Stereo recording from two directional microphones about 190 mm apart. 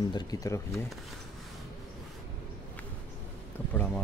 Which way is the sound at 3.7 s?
5° left (ahead or behind).